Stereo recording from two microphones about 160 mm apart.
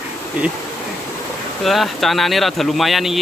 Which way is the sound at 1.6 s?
Centre (ahead or behind).